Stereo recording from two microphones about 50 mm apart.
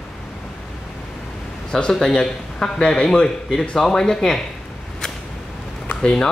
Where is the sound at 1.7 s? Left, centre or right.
Centre.